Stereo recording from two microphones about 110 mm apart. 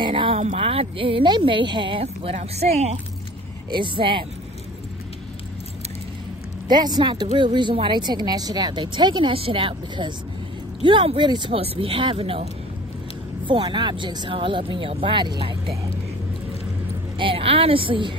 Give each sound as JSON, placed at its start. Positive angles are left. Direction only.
{"t": 0.0, "sound": "speech", "side_deg": -50}
{"t": 0.4, "sound": "speech", "side_deg": -65}
{"t": 3.7, "sound": "speech", "side_deg": -50}
{"t": 6.7, "sound": "speech", "side_deg": -40}
{"t": 11.6, "sound": "speech", "side_deg": -60}
{"t": 13.5, "sound": "speech", "side_deg": -50}
{"t": 17.2, "sound": "speech", "side_deg": -55}